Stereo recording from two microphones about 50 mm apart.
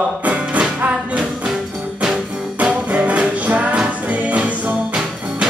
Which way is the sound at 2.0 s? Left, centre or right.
Centre.